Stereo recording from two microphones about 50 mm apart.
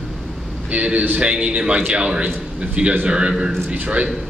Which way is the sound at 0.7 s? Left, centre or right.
Right.